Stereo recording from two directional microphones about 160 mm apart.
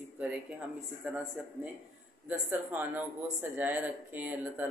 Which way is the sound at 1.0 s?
5° right (ahead or behind).